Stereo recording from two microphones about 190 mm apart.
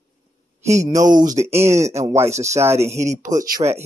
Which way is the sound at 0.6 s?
35° right (ahead or behind).